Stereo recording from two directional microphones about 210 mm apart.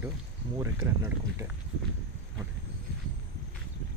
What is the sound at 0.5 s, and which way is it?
Speech, 10° right (ahead or behind).